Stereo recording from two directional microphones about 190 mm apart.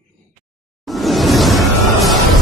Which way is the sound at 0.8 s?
Centre (ahead or behind).